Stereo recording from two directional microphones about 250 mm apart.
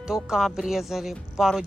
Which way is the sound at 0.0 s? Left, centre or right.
Centre.